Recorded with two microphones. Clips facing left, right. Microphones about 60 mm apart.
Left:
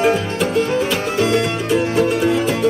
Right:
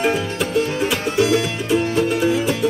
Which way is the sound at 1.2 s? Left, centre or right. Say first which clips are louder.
Even; left.